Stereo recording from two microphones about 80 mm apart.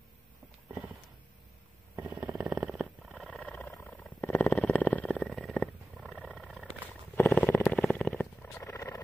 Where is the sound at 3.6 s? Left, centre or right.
Left.